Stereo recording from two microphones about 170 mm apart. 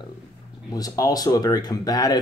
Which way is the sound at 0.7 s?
20° left (ahead or behind).